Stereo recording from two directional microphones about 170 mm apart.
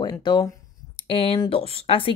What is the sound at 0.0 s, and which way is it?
A woman's voice, 25° left (ahead or behind).